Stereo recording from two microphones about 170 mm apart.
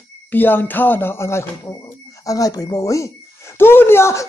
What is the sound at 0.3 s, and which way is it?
Speech, 10° left (ahead or behind).